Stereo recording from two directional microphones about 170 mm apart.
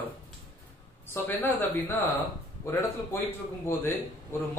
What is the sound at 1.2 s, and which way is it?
A man's voice, 10° left (ahead or behind).